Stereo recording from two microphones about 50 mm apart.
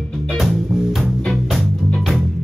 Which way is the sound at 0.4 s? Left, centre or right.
Centre.